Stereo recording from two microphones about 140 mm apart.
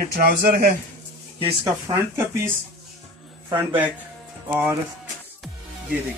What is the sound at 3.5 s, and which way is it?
Speech, 10° right (ahead or behind).